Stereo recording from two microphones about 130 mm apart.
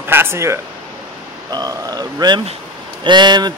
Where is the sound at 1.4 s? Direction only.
30° right (ahead or behind).